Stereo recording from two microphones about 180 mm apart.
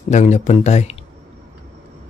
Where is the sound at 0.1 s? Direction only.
40° left (ahead or behind).